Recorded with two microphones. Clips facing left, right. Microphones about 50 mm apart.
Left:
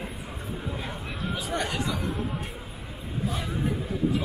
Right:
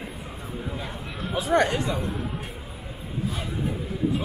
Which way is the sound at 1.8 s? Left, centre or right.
Right.